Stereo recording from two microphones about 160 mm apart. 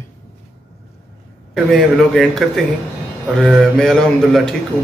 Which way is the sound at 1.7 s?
Centre (ahead or behind).